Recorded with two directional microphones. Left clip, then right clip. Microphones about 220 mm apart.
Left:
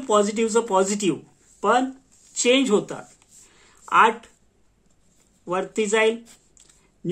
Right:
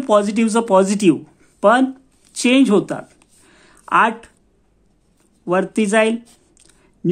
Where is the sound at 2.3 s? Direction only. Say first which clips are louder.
Right 4 dB; 45° right (ahead or behind).